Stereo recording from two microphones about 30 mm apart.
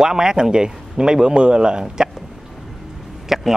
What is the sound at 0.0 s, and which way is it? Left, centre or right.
Speech, right.